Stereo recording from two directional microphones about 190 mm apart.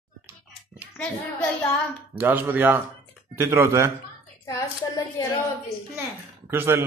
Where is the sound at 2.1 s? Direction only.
10° right (ahead or behind).